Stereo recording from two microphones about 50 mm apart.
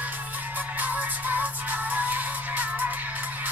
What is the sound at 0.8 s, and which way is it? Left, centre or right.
Music, right.